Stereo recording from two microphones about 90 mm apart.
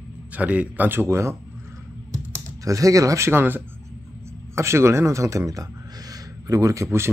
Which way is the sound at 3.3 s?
25° right (ahead or behind).